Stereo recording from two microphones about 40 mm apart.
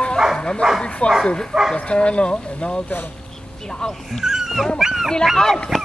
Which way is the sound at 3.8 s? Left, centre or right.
Left.